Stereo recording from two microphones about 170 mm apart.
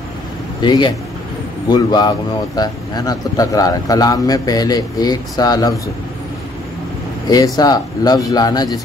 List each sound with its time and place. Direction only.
0.6 s speech: 25° left (ahead or behind)
7.2 s speech: 20° left (ahead or behind)